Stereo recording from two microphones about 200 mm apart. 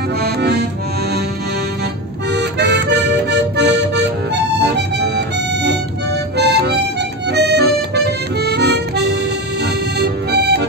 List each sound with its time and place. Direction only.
0.2 s accordion: 55° right (ahead or behind)
2.3 s music: 60° right (ahead or behind)
6.3 s harmonica: 55° right (ahead or behind)
7.2 s music: 55° right (ahead or behind)